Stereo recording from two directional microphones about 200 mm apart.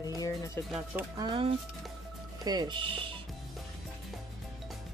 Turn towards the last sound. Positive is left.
turn(degrees=-25)  # may be behind; listen again after turning